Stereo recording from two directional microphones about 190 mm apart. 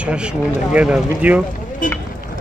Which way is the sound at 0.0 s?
5° right (ahead or behind).